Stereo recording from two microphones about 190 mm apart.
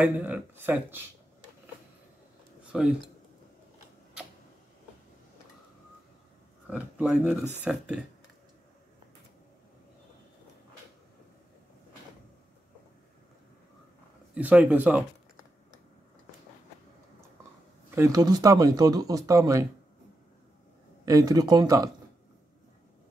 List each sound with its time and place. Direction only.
0.0 s speech: 10° right (ahead or behind)
2.6 s a sound: 5° right (ahead or behind)
6.7 s speech: 5° right (ahead or behind)
14.3 s speech: 5° right (ahead or behind)
17.9 s speech: 15° right (ahead or behind)
21.0 s speech: 20° right (ahead or behind)